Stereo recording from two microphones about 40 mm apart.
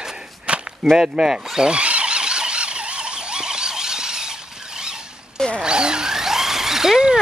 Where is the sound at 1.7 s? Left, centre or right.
Right; by 7.0 s centre.